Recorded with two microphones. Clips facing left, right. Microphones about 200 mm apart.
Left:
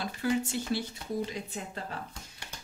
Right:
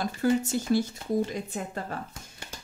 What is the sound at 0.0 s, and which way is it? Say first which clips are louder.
A woman's voice: right 5 dB; 45° right (ahead or behind).